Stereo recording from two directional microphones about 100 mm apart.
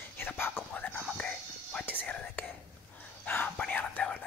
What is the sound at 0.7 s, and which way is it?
Whispering, 20° left (ahead or behind).